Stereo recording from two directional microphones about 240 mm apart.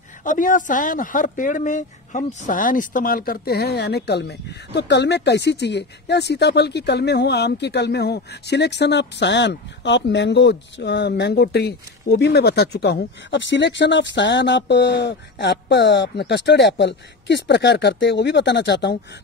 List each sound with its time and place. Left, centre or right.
0.2 s speech: left